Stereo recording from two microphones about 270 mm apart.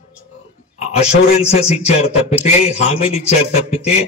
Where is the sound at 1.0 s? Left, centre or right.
Left.